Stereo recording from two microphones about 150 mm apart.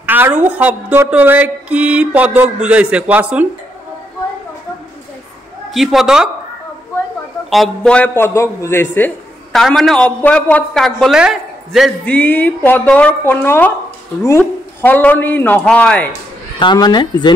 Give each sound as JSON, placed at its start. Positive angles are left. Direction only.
{"t": 0.0, "sound": "a woman's voice", "side_deg": -15}
{"t": 5.7, "sound": "a man's voice", "side_deg": 0}
{"t": 7.4, "sound": "speech", "side_deg": 0}
{"t": 9.5, "sound": "a man's voice", "side_deg": 0}
{"t": 12.0, "sound": "speech", "side_deg": 10}
{"t": 14.8, "sound": "speech", "side_deg": 10}
{"t": 16.5, "sound": "a woman's voice", "side_deg": 30}